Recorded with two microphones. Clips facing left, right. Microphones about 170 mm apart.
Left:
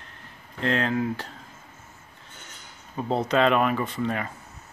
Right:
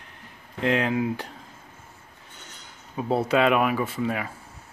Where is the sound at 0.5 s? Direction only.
10° right (ahead or behind).